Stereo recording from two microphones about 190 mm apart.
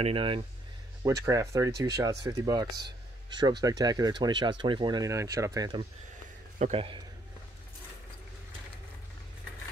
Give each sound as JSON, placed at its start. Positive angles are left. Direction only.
{"t": 0.0, "sound": "speech", "side_deg": -30}
{"t": 1.2, "sound": "speech", "side_deg": -15}
{"t": 6.6, "sound": "speech", "side_deg": -30}